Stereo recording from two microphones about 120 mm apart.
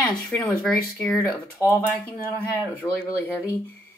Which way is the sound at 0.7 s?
5° left (ahead or behind).